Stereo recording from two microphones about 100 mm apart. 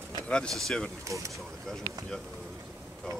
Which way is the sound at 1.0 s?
30° right (ahead or behind).